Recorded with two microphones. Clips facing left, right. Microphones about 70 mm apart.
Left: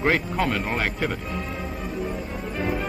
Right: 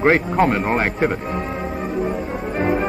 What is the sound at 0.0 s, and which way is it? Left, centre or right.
A man's voice, right.